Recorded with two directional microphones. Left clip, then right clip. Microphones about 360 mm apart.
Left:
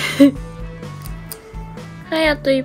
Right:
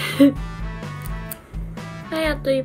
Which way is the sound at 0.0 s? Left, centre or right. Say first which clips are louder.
Left 3 dB; centre.